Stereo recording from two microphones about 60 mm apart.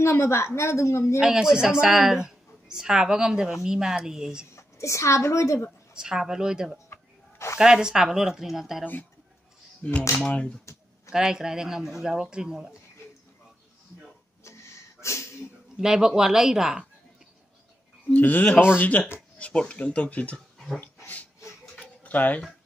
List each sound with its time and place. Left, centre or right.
0.0 s a woman's voice: left
1.2 s a woman's voice: centre
4.6 s a woman's voice: left
5.9 s a woman's voice: centre
6.9 s a sound: left
7.5 s a woman's voice: centre
9.8 s speech: centre
11.1 s a woman's voice: centre
14.4 s a sound: left
15.8 s a woman's voice: centre
18.1 s speech: left
20.8 s dog: left
21.7 s tick-tock: left